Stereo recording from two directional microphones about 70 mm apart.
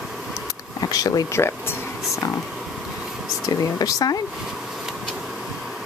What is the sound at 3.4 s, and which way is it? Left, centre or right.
Speech, left.